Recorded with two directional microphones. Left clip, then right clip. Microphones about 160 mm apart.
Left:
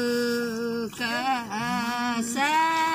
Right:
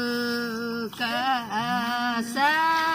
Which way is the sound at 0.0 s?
25° left (ahead or behind).